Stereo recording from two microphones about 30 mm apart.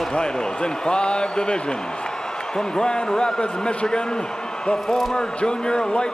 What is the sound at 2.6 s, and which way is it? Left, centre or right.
Speech, left.